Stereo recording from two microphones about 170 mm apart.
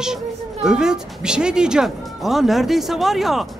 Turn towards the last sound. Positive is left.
turn(degrees=0)  # may be behind; listen again after turning